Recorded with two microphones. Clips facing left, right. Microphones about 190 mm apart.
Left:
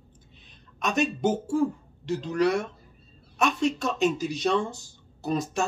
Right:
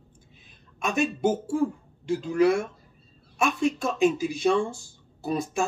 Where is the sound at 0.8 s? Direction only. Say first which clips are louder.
Right 1 dB; 10° right (ahead or behind).